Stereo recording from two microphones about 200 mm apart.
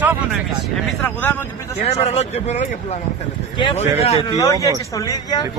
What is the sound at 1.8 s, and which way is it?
Speech, 35° left (ahead or behind).